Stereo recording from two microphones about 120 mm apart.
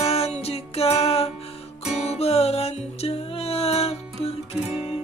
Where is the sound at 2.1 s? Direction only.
60° left (ahead or behind).